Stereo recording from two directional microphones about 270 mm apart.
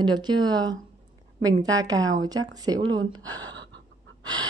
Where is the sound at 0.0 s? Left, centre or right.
Centre.